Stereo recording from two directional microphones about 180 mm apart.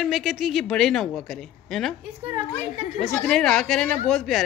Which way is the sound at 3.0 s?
5° left (ahead or behind).